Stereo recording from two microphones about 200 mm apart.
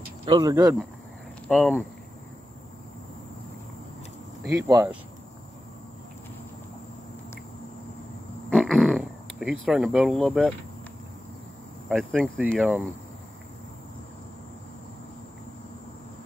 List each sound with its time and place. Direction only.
0.2 s speech: 20° right (ahead or behind)
1.5 s speech: centre (ahead or behind)
4.6 s speech: 15° right (ahead or behind)
8.5 s a sound: 5° left (ahead or behind)
11.9 s speech: centre (ahead or behind)